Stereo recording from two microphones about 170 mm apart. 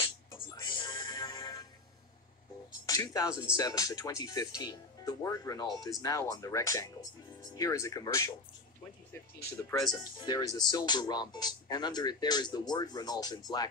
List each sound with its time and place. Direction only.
0.6 s music: 25° left (ahead or behind)
2.9 s speech: 20° left (ahead or behind)
10.1 s speech: 25° left (ahead or behind)